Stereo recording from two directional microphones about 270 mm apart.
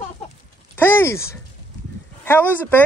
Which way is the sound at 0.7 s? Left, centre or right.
Centre.